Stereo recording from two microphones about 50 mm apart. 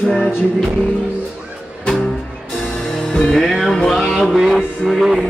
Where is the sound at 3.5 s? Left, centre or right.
Centre.